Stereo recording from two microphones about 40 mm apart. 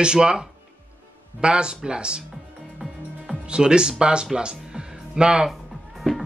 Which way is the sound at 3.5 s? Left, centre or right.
Right.